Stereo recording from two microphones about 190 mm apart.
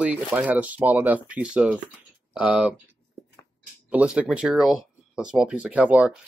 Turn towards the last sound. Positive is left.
turn(degrees=-5)  # may be behind; listen again after turning